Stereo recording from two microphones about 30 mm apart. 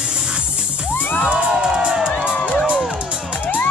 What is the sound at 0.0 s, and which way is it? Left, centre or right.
Music, right.